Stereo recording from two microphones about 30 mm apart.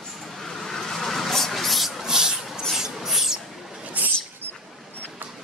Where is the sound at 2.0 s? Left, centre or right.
Right.